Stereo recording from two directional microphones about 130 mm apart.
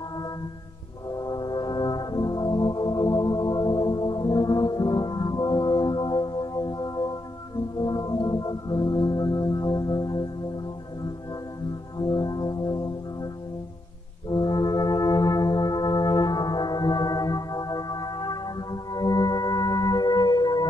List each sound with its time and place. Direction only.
1.1 s music: 30° left (ahead or behind)
12.0 s music: 30° left (ahead or behind)
14.3 s music: 35° left (ahead or behind)